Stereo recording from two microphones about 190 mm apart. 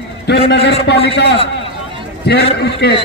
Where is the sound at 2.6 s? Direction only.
60° left (ahead or behind).